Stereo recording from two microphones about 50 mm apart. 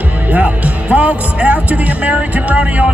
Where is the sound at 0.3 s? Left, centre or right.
Right.